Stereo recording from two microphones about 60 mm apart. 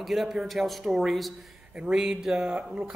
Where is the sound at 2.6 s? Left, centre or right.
Centre.